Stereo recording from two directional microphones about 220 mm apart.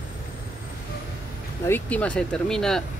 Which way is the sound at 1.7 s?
5° left (ahead or behind).